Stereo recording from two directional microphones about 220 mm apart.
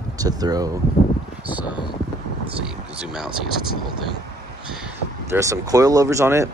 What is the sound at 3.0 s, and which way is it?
Speech, 5° right (ahead or behind).